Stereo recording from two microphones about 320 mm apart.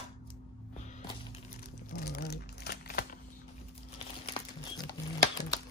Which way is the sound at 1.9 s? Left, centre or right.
Left.